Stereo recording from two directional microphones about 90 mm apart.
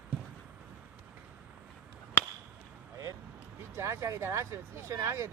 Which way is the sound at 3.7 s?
30° right (ahead or behind).